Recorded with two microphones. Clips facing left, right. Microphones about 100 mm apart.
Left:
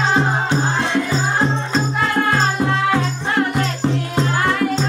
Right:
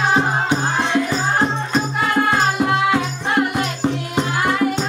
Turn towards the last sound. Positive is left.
turn(degrees=-15)  # may be behind; listen again after turning